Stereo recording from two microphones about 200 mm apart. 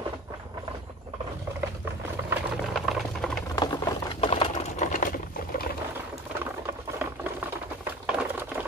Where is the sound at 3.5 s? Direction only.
20° left (ahead or behind).